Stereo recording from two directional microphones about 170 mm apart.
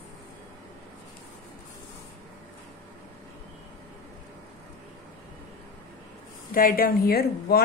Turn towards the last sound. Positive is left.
turn(degrees=65)  # may be behind; listen again after turning